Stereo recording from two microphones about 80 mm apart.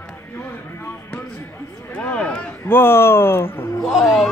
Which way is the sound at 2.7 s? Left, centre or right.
Left.